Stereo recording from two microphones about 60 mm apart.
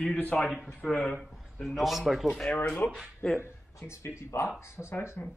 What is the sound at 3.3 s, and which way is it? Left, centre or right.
A man's voice, left.